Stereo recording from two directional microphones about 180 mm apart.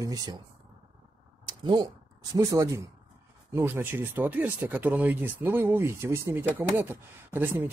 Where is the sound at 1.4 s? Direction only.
25° right (ahead or behind).